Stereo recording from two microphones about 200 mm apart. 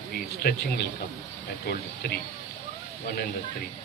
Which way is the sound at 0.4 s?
50° left (ahead or behind).